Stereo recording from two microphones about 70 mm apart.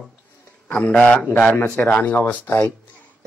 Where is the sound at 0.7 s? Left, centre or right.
Left.